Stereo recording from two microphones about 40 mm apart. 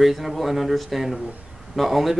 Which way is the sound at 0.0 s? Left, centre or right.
Centre.